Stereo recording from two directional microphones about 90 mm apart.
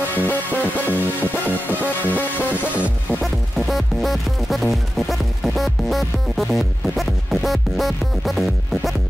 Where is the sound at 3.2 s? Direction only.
Centre (ahead or behind).